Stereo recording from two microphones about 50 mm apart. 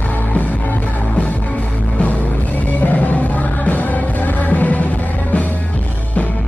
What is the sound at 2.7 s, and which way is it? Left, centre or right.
Music, left.